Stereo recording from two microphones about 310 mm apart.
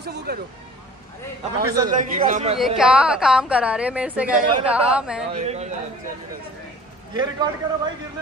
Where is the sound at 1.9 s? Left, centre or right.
Right.